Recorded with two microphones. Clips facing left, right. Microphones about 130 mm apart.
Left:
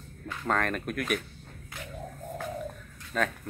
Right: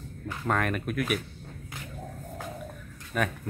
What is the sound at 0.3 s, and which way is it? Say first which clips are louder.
Speech: right 1 dB; 10° right (ahead or behind).